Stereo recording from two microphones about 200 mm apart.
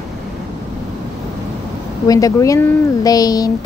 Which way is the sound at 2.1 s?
15° left (ahead or behind).